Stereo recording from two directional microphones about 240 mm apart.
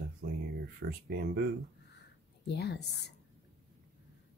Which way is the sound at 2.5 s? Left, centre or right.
Left.